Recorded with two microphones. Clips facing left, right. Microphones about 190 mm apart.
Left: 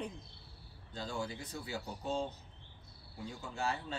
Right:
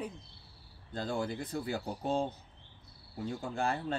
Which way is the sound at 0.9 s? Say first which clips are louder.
Right 6 dB; 55° right (ahead or behind).